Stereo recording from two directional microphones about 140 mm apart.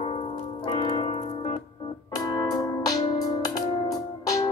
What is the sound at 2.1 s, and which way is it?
Music, 30° left (ahead or behind).